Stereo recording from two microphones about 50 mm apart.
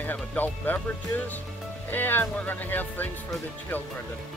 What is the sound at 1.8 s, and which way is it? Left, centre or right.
Speech, left.